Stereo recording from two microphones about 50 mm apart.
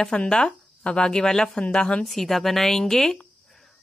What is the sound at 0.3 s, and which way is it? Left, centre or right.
Speech, centre.